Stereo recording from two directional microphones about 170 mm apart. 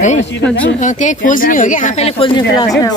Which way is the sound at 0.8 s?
45° left (ahead or behind).